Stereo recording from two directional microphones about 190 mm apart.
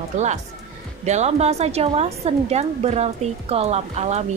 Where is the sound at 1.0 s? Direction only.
35° right (ahead or behind).